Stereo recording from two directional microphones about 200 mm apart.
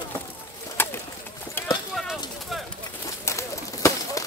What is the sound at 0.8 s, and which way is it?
Bird, 10° left (ahead or behind).